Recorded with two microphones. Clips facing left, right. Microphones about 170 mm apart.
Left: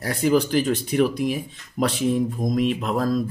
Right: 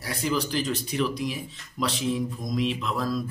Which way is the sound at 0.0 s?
50° left (ahead or behind).